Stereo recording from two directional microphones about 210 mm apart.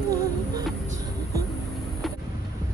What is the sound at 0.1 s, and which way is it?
Music, 15° right (ahead or behind).